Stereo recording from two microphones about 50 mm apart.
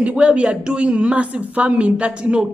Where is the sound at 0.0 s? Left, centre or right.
Right.